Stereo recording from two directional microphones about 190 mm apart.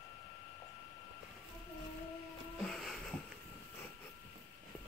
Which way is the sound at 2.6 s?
Centre (ahead or behind).